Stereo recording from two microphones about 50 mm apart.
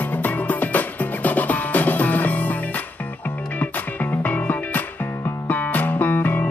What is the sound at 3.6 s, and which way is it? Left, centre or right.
Music, left.